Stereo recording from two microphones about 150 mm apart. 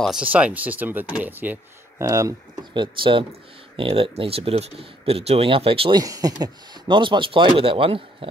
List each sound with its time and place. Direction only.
0.0 s speech: 5° right (ahead or behind)
2.0 s speech: 20° right (ahead or behind)